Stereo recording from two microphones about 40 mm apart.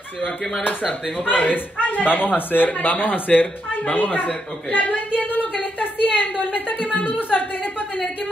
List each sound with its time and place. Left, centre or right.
1.1 s a woman's voice: left